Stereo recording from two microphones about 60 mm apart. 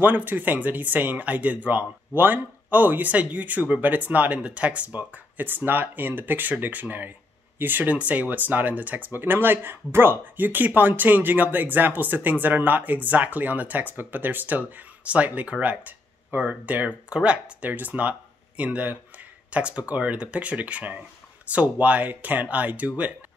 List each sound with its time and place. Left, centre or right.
0.0 s speech: right